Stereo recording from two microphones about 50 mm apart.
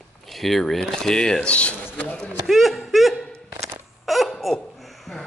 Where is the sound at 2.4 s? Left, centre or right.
Centre.